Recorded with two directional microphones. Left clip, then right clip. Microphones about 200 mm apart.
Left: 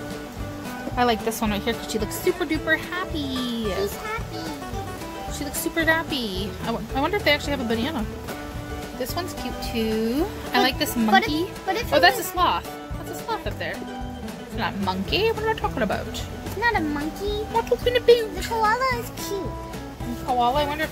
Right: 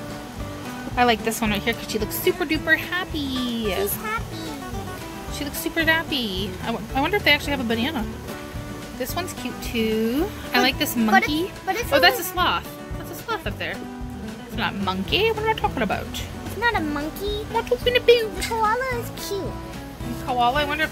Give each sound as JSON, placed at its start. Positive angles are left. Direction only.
{"t": 0.9, "sound": "a woman's voice", "side_deg": -10}
{"t": 5.8, "sound": "a woman's voice", "side_deg": -15}
{"t": 9.8, "sound": "a woman's voice", "side_deg": -15}
{"t": 16.6, "sound": "speech", "side_deg": -30}
{"t": 17.6, "sound": "a woman's voice", "side_deg": -10}
{"t": 20.3, "sound": "a woman's voice", "side_deg": -15}